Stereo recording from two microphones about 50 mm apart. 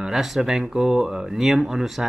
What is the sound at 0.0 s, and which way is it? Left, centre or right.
Speech, centre.